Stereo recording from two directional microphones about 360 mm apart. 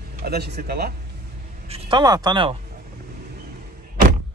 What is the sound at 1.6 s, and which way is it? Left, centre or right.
Speech, centre.